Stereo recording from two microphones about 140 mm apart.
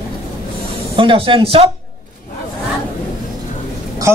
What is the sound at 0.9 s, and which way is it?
Speech, 40° right (ahead or behind).